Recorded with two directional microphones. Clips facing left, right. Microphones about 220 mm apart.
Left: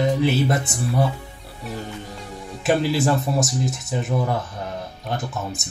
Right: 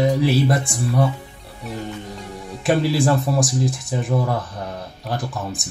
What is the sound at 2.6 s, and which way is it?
Speech, centre (ahead or behind).